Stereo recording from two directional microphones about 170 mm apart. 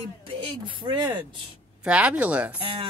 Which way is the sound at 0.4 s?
30° right (ahead or behind).